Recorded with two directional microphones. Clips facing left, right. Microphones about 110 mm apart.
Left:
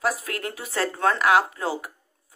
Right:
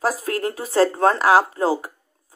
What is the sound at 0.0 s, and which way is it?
Speech, 35° right (ahead or behind).